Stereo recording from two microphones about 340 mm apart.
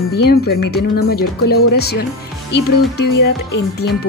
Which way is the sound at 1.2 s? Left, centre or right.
Left.